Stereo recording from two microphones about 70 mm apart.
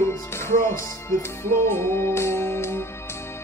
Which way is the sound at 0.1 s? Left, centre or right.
Left.